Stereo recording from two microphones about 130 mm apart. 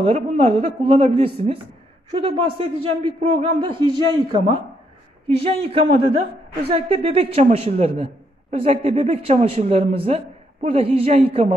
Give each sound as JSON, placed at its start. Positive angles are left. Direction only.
{"t": 0.0, "sound": "a man's voice", "side_deg": -50}
{"t": 5.6, "sound": "speech", "side_deg": -45}